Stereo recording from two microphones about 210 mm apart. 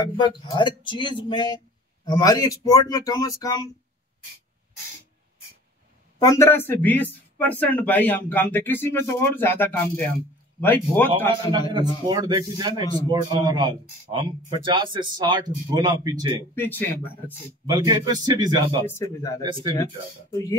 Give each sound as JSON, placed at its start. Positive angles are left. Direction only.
{"t": 0.2, "sound": "a man's voice", "side_deg": 20}
{"t": 6.2, "sound": "a man's voice", "side_deg": 15}
{"t": 11.5, "sound": "speech", "side_deg": -20}
{"t": 16.5, "sound": "a man's voice", "side_deg": 10}
{"t": 17.6, "sound": "speech", "side_deg": -20}
{"t": 18.9, "sound": "a man's voice", "side_deg": 15}
{"t": 19.4, "sound": "speech", "side_deg": -20}